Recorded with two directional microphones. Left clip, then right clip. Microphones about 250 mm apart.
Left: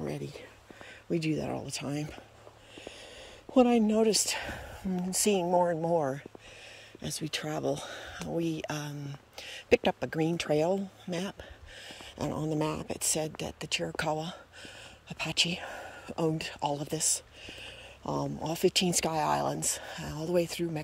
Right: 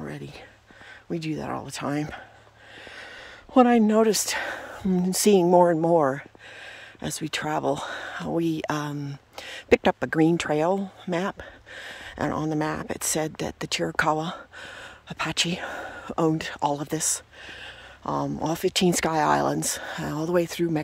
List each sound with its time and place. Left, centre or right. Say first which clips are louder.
1.1 s speech: right 2 dB; centre
3.5 s speech: right 6 dB; centre
11.1 s a sound: right 11 dB; centre
12.5 s speech: right 5 dB; centre
14.2 s a sound: right 8 dB; centre
18.4 s speech: right 3 dB; centre